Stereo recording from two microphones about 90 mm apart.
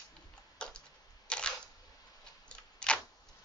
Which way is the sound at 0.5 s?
10° left (ahead or behind).